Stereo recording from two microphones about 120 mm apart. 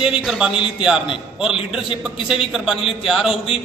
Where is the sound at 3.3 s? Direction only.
55° left (ahead or behind).